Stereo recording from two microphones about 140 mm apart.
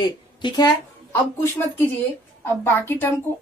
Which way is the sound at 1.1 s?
15° left (ahead or behind).